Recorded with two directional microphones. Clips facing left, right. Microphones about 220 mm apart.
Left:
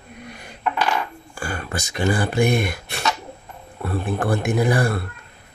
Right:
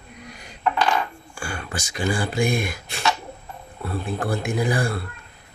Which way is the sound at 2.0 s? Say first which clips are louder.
Left 3 dB; 65° left (ahead or behind).